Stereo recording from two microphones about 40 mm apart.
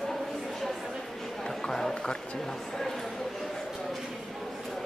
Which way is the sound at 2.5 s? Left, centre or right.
Centre.